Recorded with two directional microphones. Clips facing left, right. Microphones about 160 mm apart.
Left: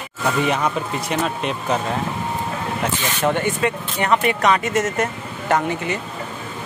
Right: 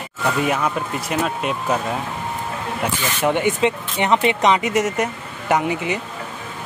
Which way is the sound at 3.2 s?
15° right (ahead or behind).